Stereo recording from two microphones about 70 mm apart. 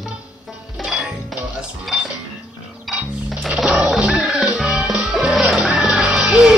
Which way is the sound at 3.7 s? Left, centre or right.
Centre.